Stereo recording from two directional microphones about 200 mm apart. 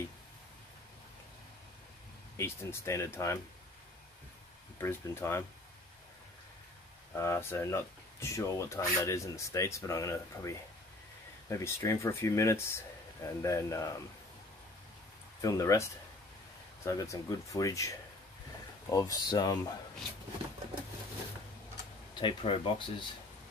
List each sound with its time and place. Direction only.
2.3 s speech: 15° left (ahead or behind)
4.7 s speech: 15° left (ahead or behind)
7.2 s speech: 10° left (ahead or behind)
15.4 s speech: 15° left (ahead or behind)
22.2 s speech: 25° left (ahead or behind)